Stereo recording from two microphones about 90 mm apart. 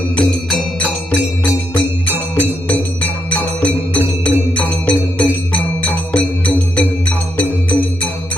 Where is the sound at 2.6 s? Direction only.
20° left (ahead or behind).